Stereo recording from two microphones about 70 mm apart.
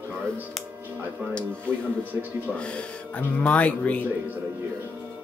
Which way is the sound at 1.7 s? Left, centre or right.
Left.